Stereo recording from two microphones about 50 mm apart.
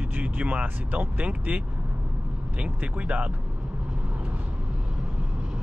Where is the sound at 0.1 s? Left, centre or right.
Right.